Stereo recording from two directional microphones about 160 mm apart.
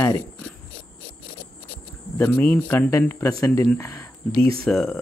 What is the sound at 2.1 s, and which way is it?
Speech, 10° left (ahead or behind).